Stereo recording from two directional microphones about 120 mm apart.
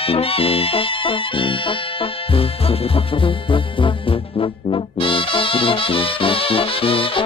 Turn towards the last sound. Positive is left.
turn(degrees=50)  # may be behind; listen again after turning